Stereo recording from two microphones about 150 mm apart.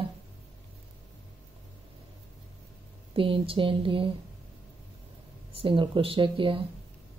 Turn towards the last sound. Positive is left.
turn(degrees=-35)  # may be behind; listen again after turning